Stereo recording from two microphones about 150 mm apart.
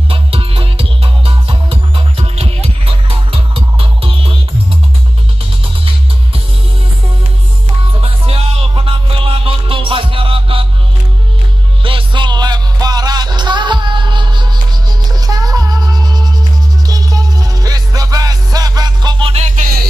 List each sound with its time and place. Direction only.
0.1 s music: 40° right (ahead or behind)
8.0 s music: 40° right (ahead or behind)
11.8 s music: 35° right (ahead or behind)
19.4 s music: 65° right (ahead or behind)